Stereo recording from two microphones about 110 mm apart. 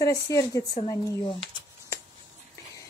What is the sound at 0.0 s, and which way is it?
Speech, 30° left (ahead or behind).